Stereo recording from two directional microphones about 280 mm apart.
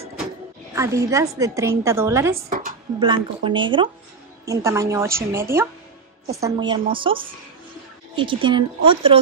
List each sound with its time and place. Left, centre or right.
0.7 s a woman's voice: centre
2.3 s speech: right
3.0 s a woman's voice: centre